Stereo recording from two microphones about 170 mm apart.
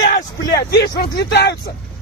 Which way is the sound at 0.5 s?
80° left.